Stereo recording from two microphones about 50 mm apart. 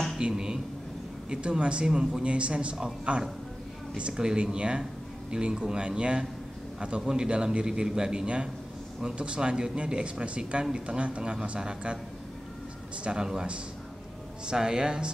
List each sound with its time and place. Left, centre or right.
0.2 s a man's voice: centre
13.0 s a man's voice: centre